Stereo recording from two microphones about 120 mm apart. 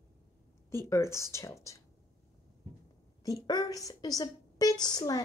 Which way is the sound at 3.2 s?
30° left (ahead or behind).